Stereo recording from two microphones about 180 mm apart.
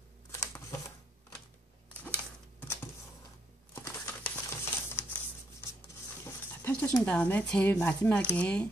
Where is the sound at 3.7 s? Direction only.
15° left (ahead or behind).